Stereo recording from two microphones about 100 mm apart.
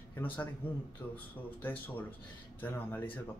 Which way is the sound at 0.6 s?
15° left (ahead or behind).